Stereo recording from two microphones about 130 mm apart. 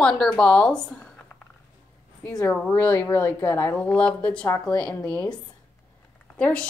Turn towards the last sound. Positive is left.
turn(degrees=10)  # may be behind; listen again after turning